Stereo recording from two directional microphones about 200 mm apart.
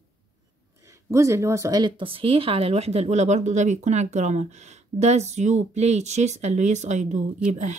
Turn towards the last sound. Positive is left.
turn(degrees=-35)  # may be behind; listen again after turning